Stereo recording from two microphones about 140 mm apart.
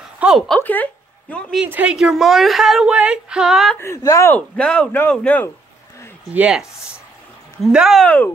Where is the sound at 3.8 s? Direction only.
20° left (ahead or behind).